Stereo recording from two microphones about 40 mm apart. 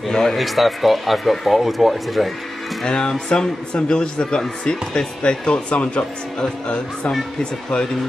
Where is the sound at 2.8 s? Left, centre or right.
Centre.